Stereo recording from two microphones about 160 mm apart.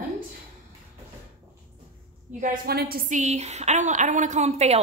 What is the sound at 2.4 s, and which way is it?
A woman's voice, 65° right (ahead or behind).